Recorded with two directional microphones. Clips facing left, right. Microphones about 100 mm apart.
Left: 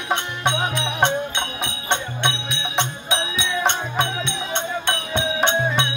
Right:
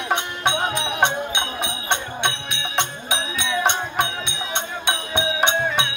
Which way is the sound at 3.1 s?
10° right (ahead or behind).